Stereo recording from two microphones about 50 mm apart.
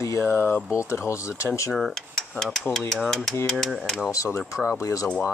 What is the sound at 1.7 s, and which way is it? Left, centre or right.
Dishes, centre.